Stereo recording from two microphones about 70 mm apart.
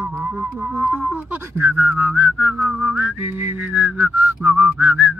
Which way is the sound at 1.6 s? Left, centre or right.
Right.